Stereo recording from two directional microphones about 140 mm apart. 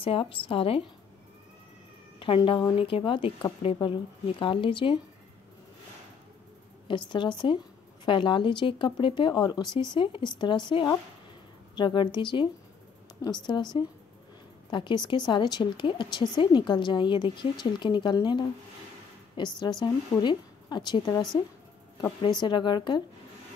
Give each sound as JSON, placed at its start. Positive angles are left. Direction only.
{"t": 0.0, "sound": "a woman's voice", "side_deg": 40}
{"t": 2.1, "sound": "a woman's voice", "side_deg": 40}
{"t": 7.1, "sound": "a woman's voice", "side_deg": 35}
{"t": 22.4, "sound": "a woman's voice", "side_deg": 30}